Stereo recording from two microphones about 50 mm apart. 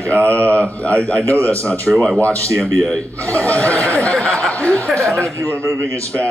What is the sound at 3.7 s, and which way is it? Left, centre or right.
Speech, right.